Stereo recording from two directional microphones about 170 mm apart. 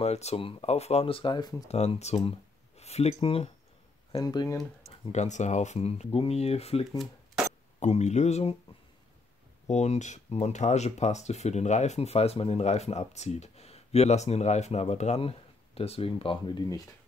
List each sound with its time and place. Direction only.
0.0 s speech: 40° left (ahead or behind)
1.7 s speech: 40° left (ahead or behind)
4.2 s speech: 25° left (ahead or behind)
5.1 s speech: 45° left (ahead or behind)
9.7 s speech: 40° left (ahead or behind); by 16.8 s 25° left (ahead or behind)